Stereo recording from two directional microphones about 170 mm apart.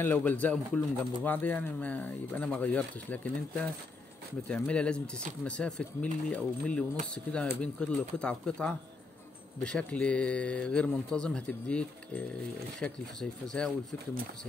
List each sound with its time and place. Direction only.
0.0 s speech: 10° left (ahead or behind)